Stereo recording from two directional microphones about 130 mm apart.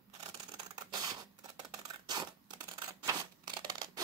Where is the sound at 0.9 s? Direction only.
30° right (ahead or behind).